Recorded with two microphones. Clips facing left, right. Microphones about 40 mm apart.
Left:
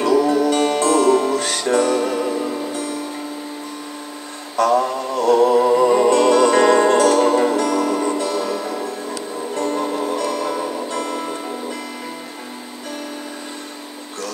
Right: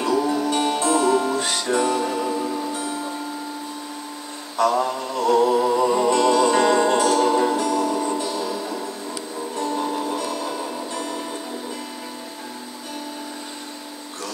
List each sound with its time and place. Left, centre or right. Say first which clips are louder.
0.0 s music: left 5 dB; left
4.6 s music: left 3 dB; left
7.6 s music: left 3 dB; left